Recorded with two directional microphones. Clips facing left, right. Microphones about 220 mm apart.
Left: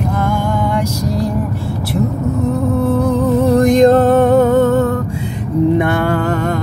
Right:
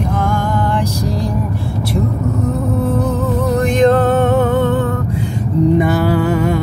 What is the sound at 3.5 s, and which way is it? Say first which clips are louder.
Music: left 3 dB; 40° left (ahead or behind).